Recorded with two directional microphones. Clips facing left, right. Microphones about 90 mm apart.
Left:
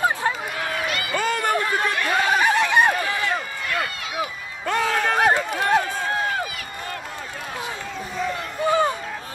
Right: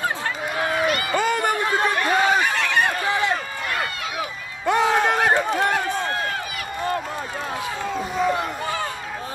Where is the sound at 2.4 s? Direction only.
20° left (ahead or behind).